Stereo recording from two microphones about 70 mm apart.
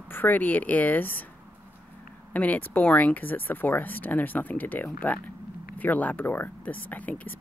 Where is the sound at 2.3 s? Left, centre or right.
Left.